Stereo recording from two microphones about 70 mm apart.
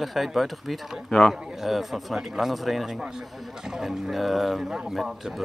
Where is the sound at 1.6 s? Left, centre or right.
Centre.